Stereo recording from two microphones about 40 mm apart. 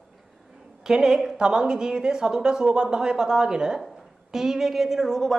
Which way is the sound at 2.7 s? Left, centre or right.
Right.